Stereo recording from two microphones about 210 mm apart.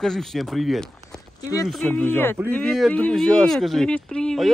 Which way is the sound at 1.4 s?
15° left (ahead or behind).